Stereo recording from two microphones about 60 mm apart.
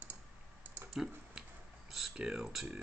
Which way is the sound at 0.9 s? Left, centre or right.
Centre.